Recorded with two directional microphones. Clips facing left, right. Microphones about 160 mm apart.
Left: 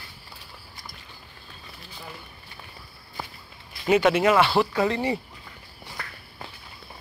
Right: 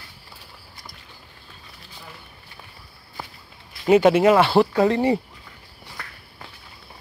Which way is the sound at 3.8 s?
40° right (ahead or behind).